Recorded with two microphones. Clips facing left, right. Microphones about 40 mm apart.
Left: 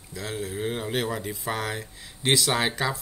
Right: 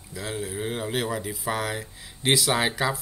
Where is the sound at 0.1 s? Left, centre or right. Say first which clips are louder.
Even; centre.